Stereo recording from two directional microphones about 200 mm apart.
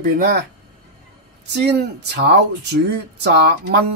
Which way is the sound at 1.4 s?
55° right (ahead or behind).